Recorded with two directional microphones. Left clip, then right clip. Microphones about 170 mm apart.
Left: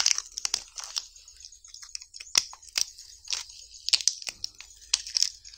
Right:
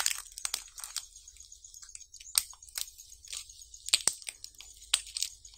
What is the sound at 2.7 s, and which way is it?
Chewing, 25° left (ahead or behind).